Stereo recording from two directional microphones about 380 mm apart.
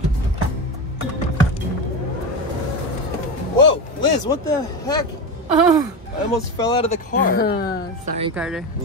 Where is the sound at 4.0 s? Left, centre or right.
Centre.